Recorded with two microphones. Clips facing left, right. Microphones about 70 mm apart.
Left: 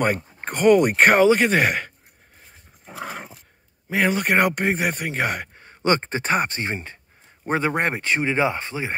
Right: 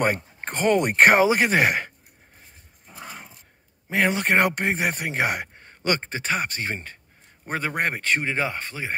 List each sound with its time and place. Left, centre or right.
0.0 s speech: centre
2.8 s dog: left
3.9 s speech: centre
5.8 s speech: left